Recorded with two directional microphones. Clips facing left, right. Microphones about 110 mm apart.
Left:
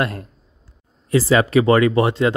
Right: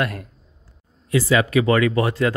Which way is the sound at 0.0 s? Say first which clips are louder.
Left 2 dB; 30° left (ahead or behind).